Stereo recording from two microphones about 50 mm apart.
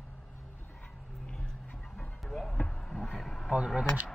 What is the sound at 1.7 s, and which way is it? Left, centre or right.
Dog, centre.